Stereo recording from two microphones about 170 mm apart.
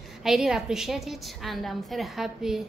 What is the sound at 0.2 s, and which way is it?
A woman's voice, 5° right (ahead or behind).